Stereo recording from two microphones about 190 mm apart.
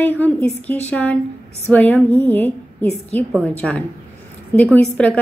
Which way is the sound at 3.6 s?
Centre (ahead or behind).